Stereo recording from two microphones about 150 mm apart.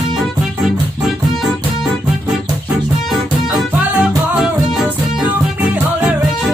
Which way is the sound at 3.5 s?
5° right (ahead or behind).